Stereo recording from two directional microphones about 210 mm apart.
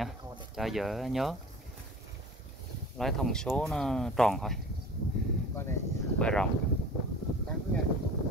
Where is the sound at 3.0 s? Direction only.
Centre (ahead or behind).